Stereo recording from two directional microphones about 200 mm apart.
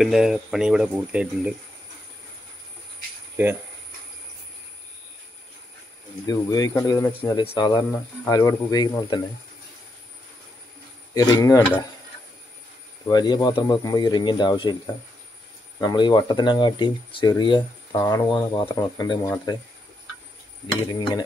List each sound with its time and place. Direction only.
0.0 s speech: centre (ahead or behind)
6.2 s speech: 15° left (ahead or behind)
11.1 s speech: 20° left (ahead or behind)
13.0 s speech: 20° left (ahead or behind)
15.8 s speech: 20° left (ahead or behind)
20.9 s speech: 20° left (ahead or behind)